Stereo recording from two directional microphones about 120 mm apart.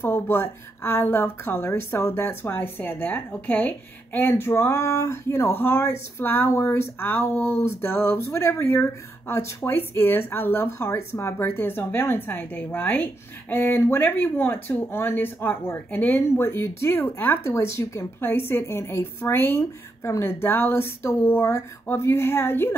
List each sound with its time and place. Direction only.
0.0 s speech: 20° left (ahead or behind)